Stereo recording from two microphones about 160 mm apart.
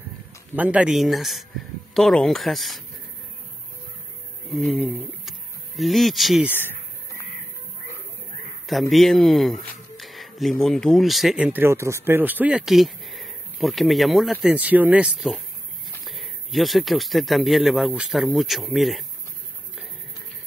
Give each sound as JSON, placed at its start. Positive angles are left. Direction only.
{"t": 0.6, "sound": "speech", "side_deg": -10}
{"t": 4.5, "sound": "speech", "side_deg": 0}
{"t": 6.6, "sound": "a sound", "side_deg": 20}
{"t": 8.9, "sound": "speech", "side_deg": 0}